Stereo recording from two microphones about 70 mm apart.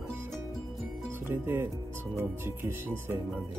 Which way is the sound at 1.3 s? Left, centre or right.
Right.